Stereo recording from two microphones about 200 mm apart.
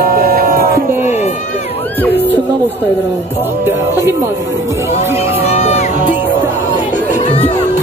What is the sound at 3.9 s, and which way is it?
Speech, 10° right (ahead or behind).